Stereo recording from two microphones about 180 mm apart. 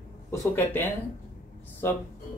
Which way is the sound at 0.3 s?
15° left (ahead or behind).